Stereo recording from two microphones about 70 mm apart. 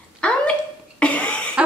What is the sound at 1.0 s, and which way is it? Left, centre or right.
Cough, left.